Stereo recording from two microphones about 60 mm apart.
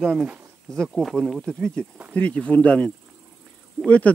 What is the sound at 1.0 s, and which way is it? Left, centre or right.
Speech, centre.